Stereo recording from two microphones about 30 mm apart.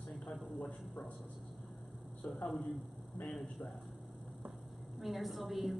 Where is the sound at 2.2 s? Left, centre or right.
Left.